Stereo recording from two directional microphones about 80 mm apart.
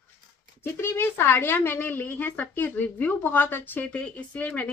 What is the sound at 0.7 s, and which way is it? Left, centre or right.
A woman's voice, left.